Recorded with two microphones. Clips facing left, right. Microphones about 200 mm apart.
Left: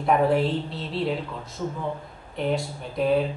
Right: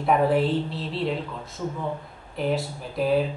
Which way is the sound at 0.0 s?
Centre (ahead or behind).